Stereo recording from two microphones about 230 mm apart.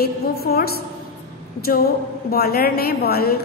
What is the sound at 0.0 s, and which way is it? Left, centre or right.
Speech, left.